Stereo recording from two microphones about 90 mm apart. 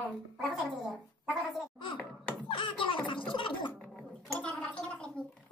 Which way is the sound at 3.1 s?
65° left (ahead or behind).